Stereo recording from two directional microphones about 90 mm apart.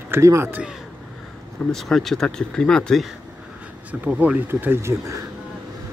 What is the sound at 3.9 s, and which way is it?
Speech, 15° right (ahead or behind).